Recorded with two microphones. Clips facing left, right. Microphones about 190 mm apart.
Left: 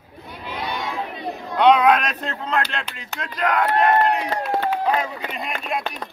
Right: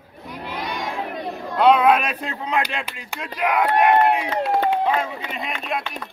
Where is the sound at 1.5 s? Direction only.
5° right (ahead or behind).